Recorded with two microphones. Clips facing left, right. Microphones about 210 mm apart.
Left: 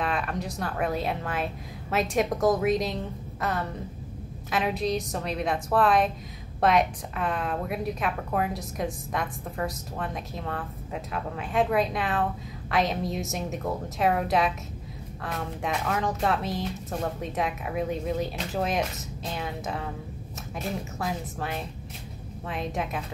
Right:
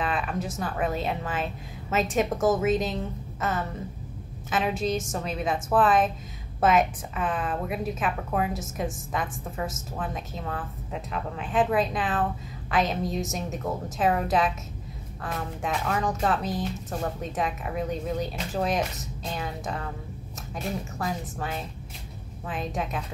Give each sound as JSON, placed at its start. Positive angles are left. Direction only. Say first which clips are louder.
{"t": 0.0, "sound": "a woman's voice", "louder": "even", "side_deg": 0}